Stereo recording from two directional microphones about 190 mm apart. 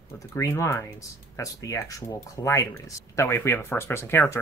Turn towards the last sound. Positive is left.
turn(degrees=15)  # may be behind; listen again after turning